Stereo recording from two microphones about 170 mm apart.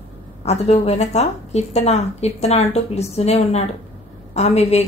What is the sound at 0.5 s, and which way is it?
Speech, 40° left (ahead or behind).